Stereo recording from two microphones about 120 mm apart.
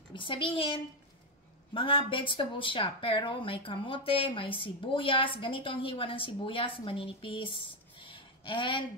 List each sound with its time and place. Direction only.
0.1 s speech: 45° left (ahead or behind)